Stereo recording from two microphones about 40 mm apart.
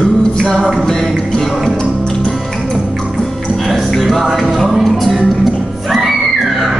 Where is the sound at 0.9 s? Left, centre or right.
Centre.